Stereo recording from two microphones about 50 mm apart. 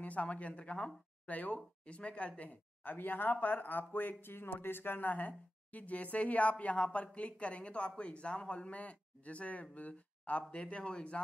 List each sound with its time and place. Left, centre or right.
0.0 s speech: left